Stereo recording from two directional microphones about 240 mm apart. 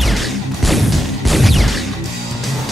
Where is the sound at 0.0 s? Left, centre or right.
Centre.